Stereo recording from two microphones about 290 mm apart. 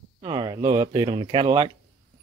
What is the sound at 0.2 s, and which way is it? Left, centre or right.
Speech, centre.